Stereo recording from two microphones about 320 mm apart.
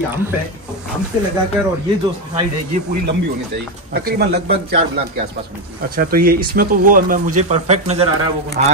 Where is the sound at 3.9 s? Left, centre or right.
Right.